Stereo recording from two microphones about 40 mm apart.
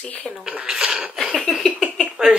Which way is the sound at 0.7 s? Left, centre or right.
Centre.